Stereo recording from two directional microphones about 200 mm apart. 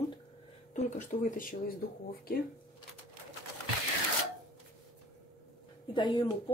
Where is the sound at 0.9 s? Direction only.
40° left (ahead or behind).